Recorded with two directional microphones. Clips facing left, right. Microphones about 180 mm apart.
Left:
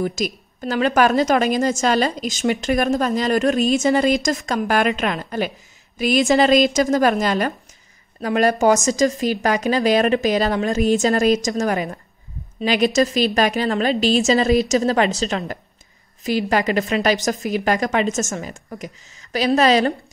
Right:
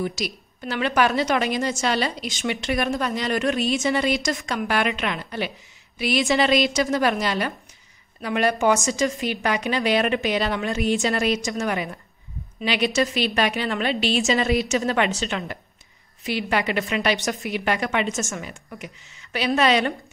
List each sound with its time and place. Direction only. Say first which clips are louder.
0.0 s a woman's voice: left 4 dB; 45° left (ahead or behind)